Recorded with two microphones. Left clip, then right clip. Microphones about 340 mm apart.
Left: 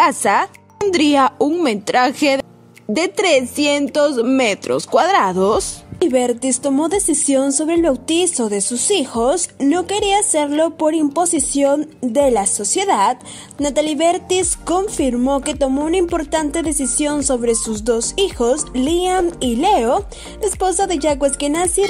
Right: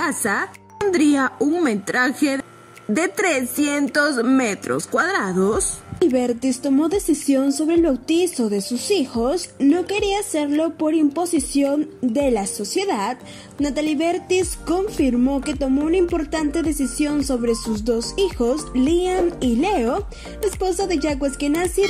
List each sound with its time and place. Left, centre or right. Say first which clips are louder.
0.0 s a woman's voice: left 8 dB; centre